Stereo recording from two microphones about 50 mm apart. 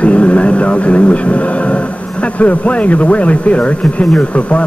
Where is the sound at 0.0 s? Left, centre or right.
Left.